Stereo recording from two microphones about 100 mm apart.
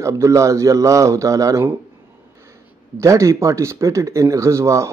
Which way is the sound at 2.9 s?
30° right (ahead or behind).